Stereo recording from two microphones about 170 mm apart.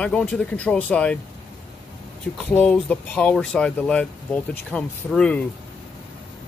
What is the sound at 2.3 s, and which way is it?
Speech, 10° left (ahead or behind).